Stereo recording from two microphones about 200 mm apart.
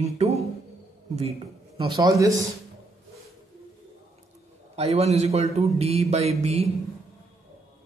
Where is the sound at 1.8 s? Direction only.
20° right (ahead or behind).